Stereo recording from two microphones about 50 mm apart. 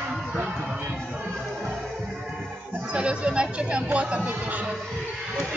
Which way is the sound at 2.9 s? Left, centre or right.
Right.